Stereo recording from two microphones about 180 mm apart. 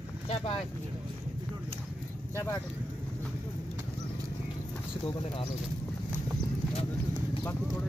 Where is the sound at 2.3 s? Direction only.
15° left (ahead or behind).